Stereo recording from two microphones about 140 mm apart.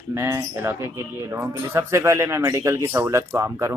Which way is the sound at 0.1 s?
20° right (ahead or behind).